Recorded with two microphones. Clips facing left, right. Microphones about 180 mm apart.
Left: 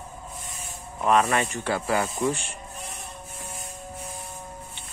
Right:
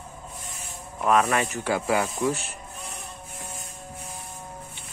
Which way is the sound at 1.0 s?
Centre (ahead or behind).